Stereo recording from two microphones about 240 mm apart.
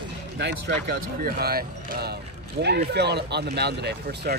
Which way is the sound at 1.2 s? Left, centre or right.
Right.